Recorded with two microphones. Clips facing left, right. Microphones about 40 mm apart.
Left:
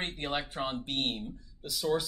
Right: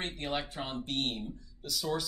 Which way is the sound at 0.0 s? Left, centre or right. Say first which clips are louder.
Left 1 dB; left.